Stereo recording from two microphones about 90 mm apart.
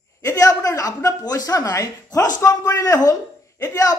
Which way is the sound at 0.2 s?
40° left (ahead or behind).